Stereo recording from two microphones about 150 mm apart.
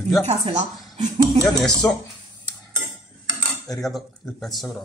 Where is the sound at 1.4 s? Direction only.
Centre (ahead or behind).